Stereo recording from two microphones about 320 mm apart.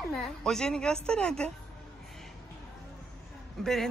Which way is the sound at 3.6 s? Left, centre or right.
Centre.